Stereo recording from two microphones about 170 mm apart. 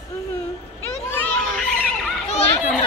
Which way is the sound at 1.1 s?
10° left (ahead or behind).